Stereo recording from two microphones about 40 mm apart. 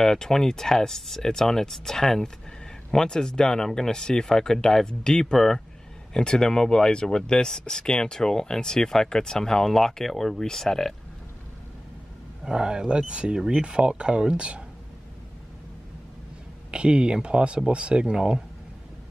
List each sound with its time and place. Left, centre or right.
0.0 s speech: centre
12.4 s speech: centre
16.7 s speech: right